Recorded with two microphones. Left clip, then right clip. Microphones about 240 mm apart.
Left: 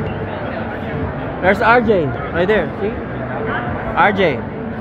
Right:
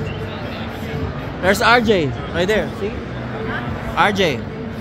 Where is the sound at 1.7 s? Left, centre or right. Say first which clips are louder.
Left 1 dB; right.